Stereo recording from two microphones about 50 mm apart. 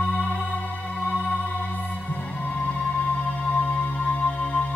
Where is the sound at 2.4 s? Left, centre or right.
Left.